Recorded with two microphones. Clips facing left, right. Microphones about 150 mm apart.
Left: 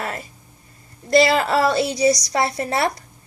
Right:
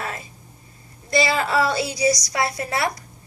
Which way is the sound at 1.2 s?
60° left (ahead or behind).